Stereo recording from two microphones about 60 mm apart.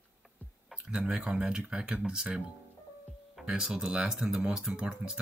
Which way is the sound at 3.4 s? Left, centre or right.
Centre.